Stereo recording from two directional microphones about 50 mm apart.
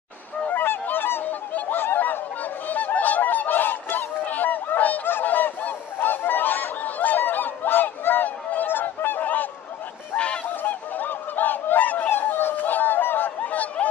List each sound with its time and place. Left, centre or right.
0.6 s goose: left
7.2 s honk: left
10.1 s goose: left
10.5 s goose: left
12.1 s a sound: left